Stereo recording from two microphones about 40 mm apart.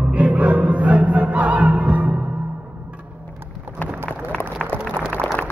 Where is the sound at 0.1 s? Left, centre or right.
Right.